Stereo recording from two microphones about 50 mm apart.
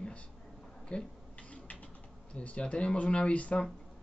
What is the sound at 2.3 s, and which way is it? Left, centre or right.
Speech, left.